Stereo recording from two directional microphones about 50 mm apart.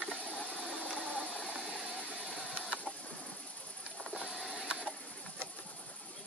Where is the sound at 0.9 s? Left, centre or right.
Left.